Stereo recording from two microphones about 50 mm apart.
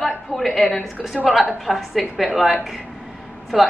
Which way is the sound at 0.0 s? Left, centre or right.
Centre.